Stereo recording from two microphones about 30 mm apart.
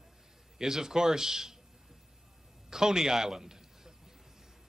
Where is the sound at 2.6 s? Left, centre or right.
Centre.